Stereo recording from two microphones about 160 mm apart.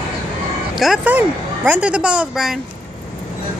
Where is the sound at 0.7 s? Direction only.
Centre (ahead or behind).